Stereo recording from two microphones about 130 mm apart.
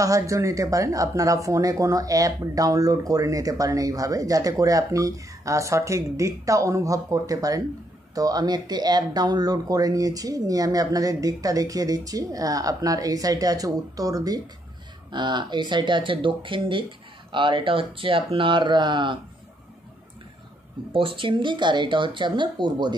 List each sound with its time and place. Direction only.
0.0 s speech: 25° right (ahead or behind)
20.9 s speech: 45° right (ahead or behind)